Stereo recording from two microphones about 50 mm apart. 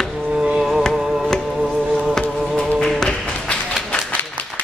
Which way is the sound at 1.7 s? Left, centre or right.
Centre.